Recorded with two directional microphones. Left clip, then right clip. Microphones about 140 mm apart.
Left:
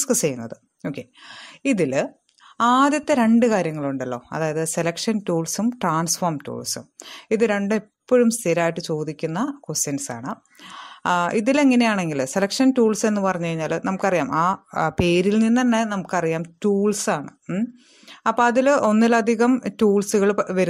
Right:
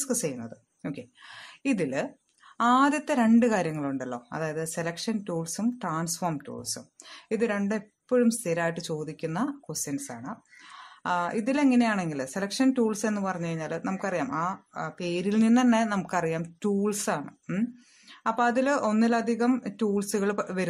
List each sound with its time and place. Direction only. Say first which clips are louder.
0.0 s a woman's voice: left 9 dB; 45° left (ahead or behind)
15.3 s speech: left 4 dB; 30° left (ahead or behind)
18.2 s speech: left 7 dB; 40° left (ahead or behind)